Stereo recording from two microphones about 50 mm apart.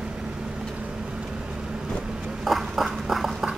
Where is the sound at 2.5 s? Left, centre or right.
Centre.